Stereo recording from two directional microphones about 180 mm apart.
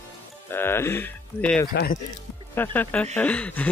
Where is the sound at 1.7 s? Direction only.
55° left (ahead or behind).